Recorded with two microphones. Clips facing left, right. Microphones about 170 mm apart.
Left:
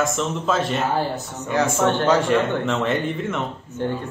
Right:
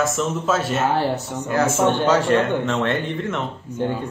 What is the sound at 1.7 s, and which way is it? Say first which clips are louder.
Speech: right 1 dB; 15° right (ahead or behind).